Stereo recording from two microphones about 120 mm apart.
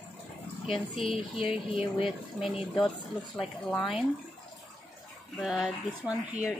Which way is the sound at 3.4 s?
10° left (ahead or behind).